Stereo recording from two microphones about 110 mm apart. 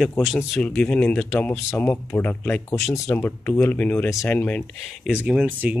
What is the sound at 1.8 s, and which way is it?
Speech, 20° left (ahead or behind).